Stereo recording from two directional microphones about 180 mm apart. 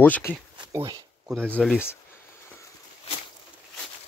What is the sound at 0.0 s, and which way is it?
Speech, 10° left (ahead or behind).